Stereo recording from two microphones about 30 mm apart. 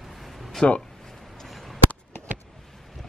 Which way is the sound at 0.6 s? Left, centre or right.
Left.